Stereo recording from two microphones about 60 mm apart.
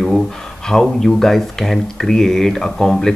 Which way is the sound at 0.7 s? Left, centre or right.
Centre.